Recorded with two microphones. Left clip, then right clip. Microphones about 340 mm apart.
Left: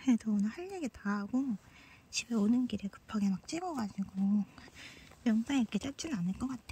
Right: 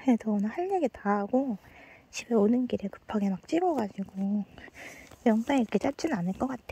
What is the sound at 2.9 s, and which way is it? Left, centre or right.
Speech, right.